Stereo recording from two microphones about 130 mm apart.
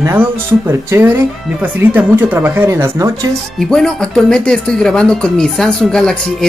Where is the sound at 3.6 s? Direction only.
5° left (ahead or behind).